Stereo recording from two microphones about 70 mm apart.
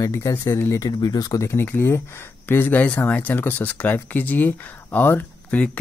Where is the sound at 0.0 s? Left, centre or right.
Left.